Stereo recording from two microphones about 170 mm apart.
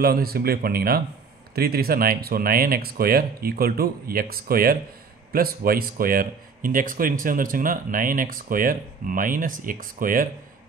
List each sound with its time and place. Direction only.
0.0 s speech: 65° right (ahead or behind)